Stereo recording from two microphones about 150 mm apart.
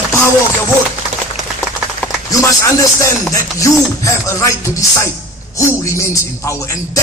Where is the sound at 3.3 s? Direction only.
20° left (ahead or behind).